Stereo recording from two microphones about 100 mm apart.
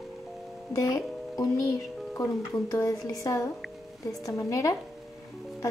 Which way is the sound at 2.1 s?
35° left (ahead or behind).